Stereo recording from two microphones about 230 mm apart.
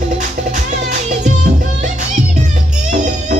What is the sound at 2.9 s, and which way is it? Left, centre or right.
Music, right.